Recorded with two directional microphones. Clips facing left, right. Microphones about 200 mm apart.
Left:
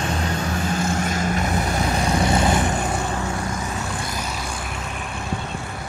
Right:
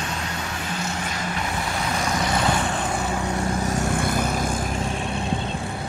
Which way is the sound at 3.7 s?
50° right (ahead or behind).